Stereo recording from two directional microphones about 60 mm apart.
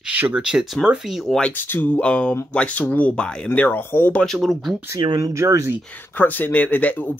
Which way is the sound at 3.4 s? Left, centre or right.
Left.